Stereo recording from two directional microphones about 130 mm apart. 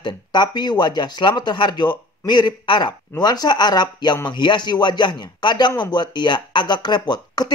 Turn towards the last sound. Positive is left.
turn(degrees=35)  # may be behind; listen again after turning